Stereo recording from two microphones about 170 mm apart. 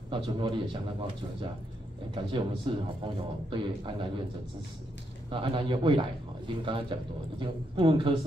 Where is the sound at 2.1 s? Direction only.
30° right (ahead or behind).